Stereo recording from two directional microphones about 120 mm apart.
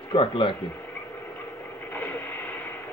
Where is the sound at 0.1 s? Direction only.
45° left (ahead or behind).